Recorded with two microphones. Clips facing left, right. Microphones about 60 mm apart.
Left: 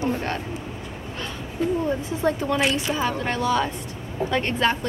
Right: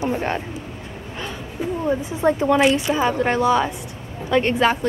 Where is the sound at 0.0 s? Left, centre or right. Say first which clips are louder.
Right 3 dB; right.